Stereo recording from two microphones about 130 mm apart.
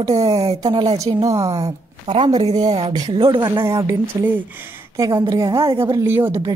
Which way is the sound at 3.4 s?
20° right (ahead or behind).